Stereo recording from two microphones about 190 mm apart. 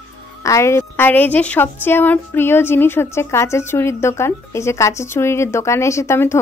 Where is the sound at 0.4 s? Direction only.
15° left (ahead or behind).